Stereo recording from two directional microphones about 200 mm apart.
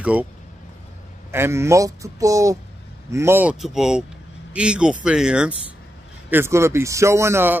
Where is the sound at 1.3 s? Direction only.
10° right (ahead or behind).